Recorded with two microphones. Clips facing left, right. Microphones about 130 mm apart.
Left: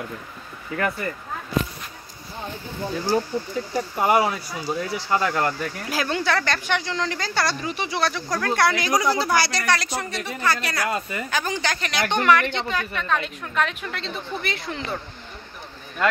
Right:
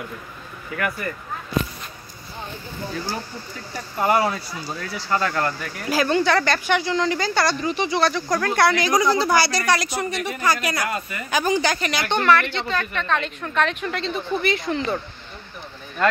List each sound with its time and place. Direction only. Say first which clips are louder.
0.7 s speech: left 1 dB; 25° left (ahead or behind)
3.7 s speech: even; 15° left (ahead or behind)
5.9 s speech: right 6 dB; centre (ahead or behind)
10.9 s speech: left 2 dB; 25° left (ahead or behind)
11.2 s a woman's voice: right 8 dB; 10° right (ahead or behind)
12.1 s speech: right 1 dB; 10° left (ahead or behind)